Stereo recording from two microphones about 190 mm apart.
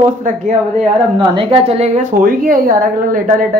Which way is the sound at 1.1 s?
25° right (ahead or behind).